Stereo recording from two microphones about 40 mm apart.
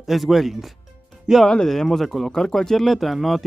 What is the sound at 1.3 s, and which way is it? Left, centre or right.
Speech, centre.